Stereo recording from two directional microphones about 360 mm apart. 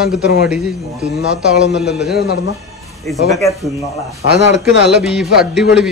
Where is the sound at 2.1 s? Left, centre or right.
Left.